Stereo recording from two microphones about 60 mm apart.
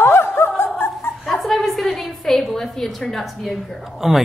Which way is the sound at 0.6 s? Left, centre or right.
Left.